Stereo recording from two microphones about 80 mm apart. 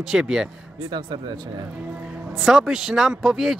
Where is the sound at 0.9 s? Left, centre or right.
Right.